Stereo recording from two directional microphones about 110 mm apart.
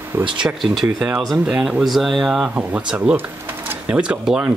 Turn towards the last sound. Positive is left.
turn(degrees=-5)  # may be behind; listen again after turning